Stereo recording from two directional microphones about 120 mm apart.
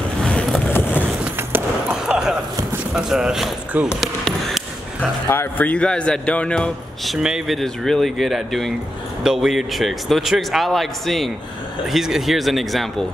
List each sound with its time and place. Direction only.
0.2 s vehicle: 5° left (ahead or behind)
0.7 s vehicle: 15° left (ahead or behind)
1.5 s a sound: 10° right (ahead or behind)
2.9 s speech: 5° right (ahead or behind)
4.0 s chop: centre (ahead or behind)
5.3 s speech: 15° left (ahead or behind)
7.2 s speech: 5° right (ahead or behind)